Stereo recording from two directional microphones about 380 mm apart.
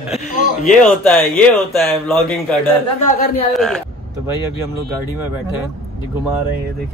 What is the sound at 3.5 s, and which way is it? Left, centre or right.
Speech, centre.